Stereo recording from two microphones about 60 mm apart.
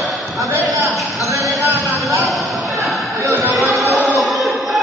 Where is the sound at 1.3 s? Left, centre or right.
Right.